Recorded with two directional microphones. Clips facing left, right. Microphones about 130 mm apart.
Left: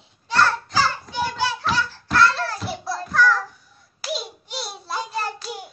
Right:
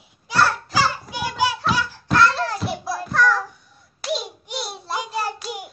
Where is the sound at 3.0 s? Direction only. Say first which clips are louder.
Even; centre (ahead or behind).